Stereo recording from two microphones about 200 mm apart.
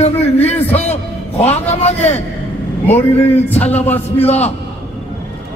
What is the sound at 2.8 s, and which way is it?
A man's voice, 10° left (ahead or behind).